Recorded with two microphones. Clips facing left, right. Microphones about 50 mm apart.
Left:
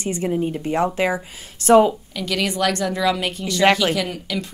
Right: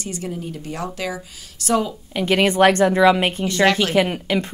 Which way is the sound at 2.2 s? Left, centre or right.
Right.